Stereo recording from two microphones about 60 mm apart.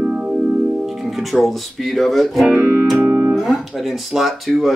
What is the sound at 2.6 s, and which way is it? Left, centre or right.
Music, centre.